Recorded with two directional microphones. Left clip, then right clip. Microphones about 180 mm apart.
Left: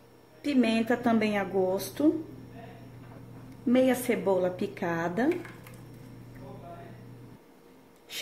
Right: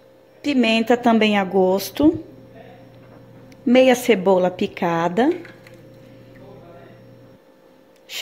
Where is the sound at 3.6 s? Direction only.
35° right (ahead or behind).